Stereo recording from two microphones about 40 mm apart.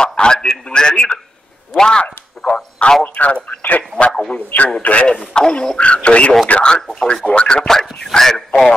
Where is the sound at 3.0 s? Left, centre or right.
Left.